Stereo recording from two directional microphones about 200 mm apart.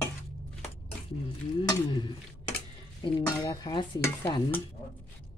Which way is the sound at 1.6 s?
25° left (ahead or behind).